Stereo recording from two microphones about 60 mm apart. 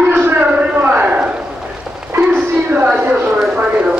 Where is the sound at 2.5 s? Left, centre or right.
Right.